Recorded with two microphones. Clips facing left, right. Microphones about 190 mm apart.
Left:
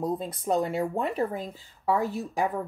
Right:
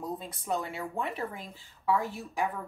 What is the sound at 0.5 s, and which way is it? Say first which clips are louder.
A woman's voice: left 8 dB; 40° left (ahead or behind).